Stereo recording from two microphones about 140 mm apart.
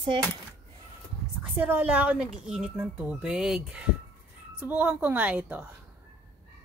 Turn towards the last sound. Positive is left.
turn(degrees=-15)  # may be behind; listen again after turning